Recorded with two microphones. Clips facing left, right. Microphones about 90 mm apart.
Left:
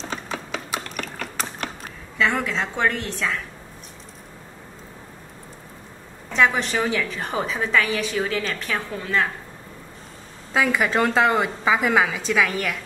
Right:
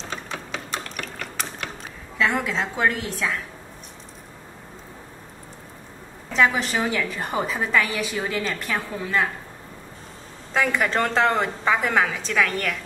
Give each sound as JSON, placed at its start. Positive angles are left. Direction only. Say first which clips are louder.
{"t": 0.1, "sound": "a sound", "louder": "left 1 dB", "side_deg": 5}
{"t": 2.1, "sound": "a woman's voice", "louder": "even", "side_deg": 0}
{"t": 6.3, "sound": "a woman's voice", "louder": "left 1 dB", "side_deg": 0}
{"t": 10.5, "sound": "a woman's voice", "louder": "left 1 dB", "side_deg": 5}